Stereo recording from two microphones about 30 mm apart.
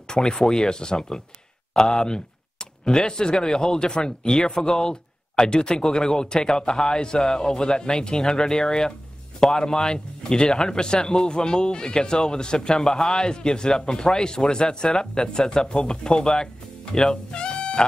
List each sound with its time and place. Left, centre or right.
0.1 s a man's voice: left
8.1 s a man's voice: centre
17.3 s music: left